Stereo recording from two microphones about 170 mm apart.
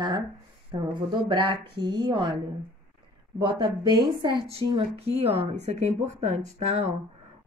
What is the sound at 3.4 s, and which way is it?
A woman's voice, 25° right (ahead or behind).